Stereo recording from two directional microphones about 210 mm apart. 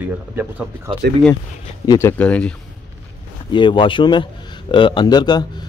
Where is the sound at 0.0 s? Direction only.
10° right (ahead or behind).